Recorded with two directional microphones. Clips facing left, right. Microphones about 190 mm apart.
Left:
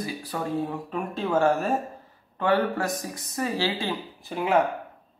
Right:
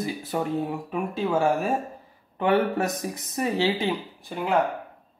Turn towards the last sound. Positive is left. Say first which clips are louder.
# left 1 dB
turn(degrees=5)  # may be behind; listen again after turning